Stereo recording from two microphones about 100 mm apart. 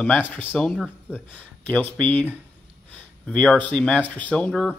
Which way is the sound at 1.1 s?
20° left (ahead or behind).